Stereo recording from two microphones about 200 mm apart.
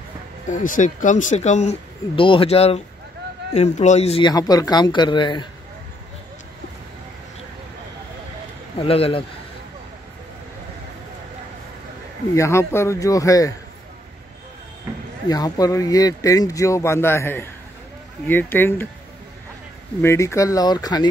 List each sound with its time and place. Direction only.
0.5 s speech: 40° left (ahead or behind)
2.1 s speech: 25° left (ahead or behind)
8.7 s speech: 30° left (ahead or behind)
12.4 s speech: 15° left (ahead or behind)
14.9 s a sound: 10° right (ahead or behind)
15.2 s speech: 20° left (ahead or behind)
20.0 s speech: 15° left (ahead or behind)